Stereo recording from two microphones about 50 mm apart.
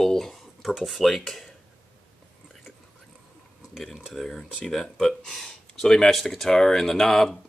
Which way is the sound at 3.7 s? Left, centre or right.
Centre.